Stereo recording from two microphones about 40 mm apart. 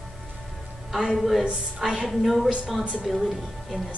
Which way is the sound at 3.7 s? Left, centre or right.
Left.